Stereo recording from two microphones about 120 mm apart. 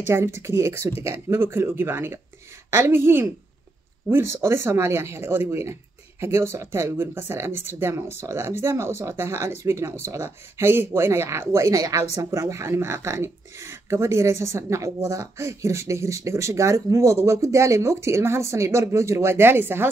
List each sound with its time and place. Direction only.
0.0 s speech: 20° right (ahead or behind)